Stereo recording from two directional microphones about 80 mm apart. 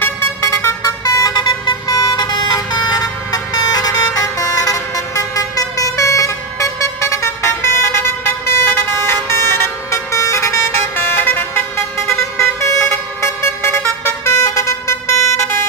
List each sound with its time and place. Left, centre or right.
0.0 s vehicle: left
1.3 s vehicle: left